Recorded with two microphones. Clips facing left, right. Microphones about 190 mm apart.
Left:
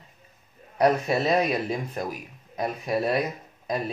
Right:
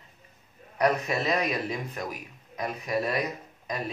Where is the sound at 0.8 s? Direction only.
35° left (ahead or behind).